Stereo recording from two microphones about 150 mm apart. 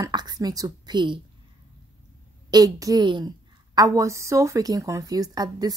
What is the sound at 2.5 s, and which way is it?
A woman's voice, 25° right (ahead or behind).